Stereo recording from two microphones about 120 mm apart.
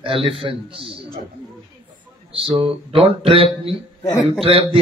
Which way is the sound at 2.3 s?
50° right (ahead or behind).